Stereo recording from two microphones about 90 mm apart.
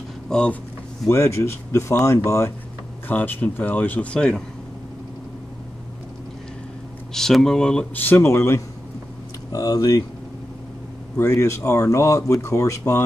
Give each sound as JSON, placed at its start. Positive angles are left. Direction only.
{"t": 0.3, "sound": "speech", "side_deg": 10}
{"t": 1.0, "sound": "speech", "side_deg": 30}
{"t": 3.1, "sound": "speech", "side_deg": 20}
{"t": 7.2, "sound": "speech", "side_deg": 5}
{"t": 7.9, "sound": "speech", "side_deg": 25}
{"t": 11.1, "sound": "speech", "side_deg": 30}